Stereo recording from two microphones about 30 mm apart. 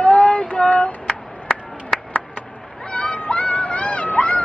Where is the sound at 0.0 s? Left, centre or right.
Left.